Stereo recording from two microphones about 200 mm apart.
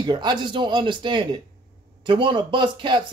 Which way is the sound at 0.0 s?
20° right (ahead or behind).